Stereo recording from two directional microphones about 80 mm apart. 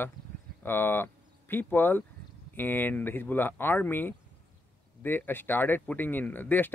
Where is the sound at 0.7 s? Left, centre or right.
Left.